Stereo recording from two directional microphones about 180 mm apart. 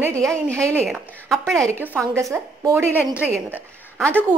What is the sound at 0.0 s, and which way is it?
Speech, 15° right (ahead or behind).